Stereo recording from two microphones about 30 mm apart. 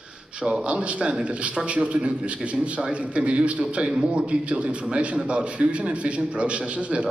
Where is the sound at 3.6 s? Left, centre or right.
Right.